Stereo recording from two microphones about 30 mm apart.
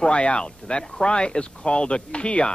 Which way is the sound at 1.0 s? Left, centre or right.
Left.